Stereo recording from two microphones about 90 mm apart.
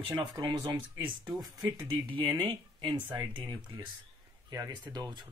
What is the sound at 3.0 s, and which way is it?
Speech, 20° right (ahead or behind).